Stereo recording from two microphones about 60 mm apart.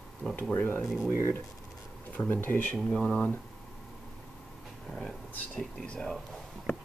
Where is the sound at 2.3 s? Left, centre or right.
Left.